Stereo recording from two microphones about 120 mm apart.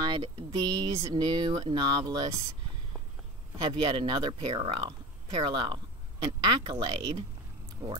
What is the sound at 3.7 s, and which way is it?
Speech, 40° right (ahead or behind).